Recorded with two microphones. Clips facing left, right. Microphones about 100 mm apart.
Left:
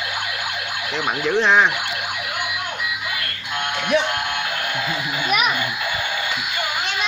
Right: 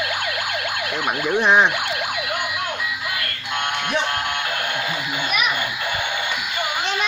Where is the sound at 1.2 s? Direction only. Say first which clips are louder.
Even; 15° right (ahead or behind).